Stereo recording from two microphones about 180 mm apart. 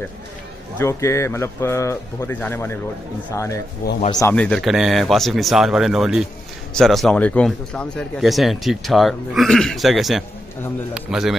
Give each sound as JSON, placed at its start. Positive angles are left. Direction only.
{"t": 0.7, "sound": "a man's voice", "side_deg": 15}
{"t": 4.4, "sound": "speech", "side_deg": 5}